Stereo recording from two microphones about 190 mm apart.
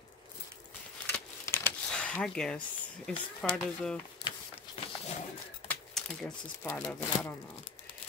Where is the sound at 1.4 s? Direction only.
15° left (ahead or behind).